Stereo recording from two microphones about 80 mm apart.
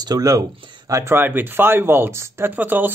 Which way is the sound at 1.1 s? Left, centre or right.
Right.